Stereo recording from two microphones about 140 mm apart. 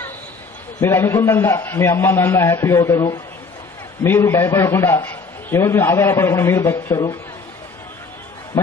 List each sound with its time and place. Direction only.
0.7 s a man's voice: 15° left (ahead or behind)